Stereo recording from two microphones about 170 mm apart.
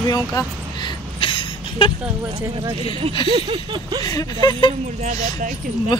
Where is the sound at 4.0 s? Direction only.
20° left (ahead or behind).